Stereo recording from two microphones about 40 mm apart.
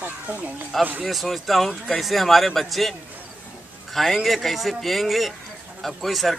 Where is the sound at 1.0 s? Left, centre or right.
Centre.